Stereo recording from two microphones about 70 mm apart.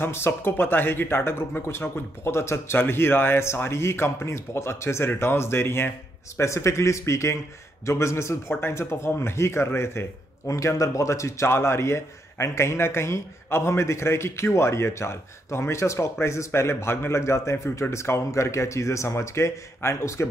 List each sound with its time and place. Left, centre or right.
0.0 s speech: left